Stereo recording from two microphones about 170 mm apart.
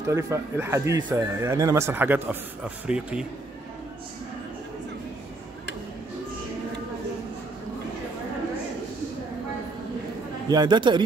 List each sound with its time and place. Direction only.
0.1 s speech: 15° right (ahead or behind)
10.5 s a man's voice: 25° right (ahead or behind)